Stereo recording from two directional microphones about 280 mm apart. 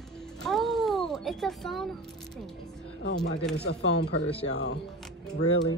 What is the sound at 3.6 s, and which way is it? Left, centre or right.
Speech, left.